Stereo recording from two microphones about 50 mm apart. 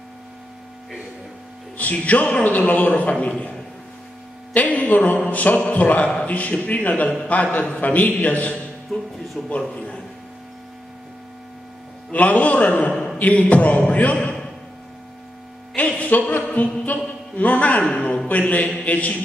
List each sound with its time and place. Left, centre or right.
2.0 s a man's voice: left
4.6 s a man's voice: left
8.9 s speech: centre
9.6 s a man's voice: left
12.1 s a man's voice: left
15.7 s a man's voice: left